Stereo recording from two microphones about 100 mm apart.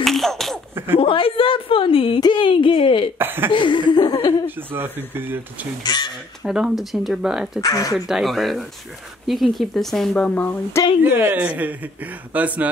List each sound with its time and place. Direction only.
0.0 s a sound: centre (ahead or behind)
0.9 s a woman's voice: 60° left (ahead or behind)
2.1 s a woman's voice: 50° left (ahead or behind)
3.2 s speech: 20° right (ahead or behind)
3.5 s chuckle: 55° left (ahead or behind)
4.5 s speech: 20° right (ahead or behind)
5.9 s chuckle: 45° left (ahead or behind)
6.4 s speech: 5° right (ahead or behind)
7.6 s speech: 35° left (ahead or behind)
8.1 s speech: centre (ahead or behind); by 10.8 s 15° left (ahead or behind)
11.0 s speech: 20° right (ahead or behind)